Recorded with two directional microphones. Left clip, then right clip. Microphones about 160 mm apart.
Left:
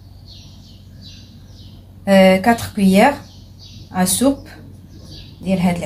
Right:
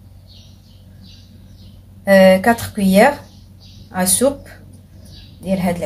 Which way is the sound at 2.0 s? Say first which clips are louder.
Right 2 dB; 20° right (ahead or behind).